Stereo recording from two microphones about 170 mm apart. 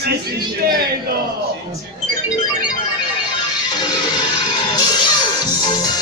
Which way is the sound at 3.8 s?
25° left (ahead or behind).